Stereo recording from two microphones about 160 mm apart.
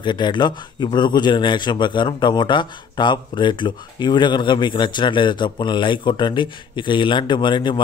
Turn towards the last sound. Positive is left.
turn(degrees=30)  # may be behind; listen again after turning